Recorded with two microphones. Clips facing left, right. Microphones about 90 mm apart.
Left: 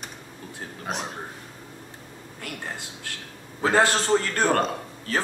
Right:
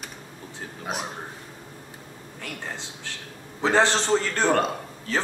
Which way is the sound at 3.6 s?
10° left (ahead or behind).